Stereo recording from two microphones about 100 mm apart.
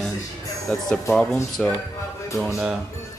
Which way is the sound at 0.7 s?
10° left (ahead or behind).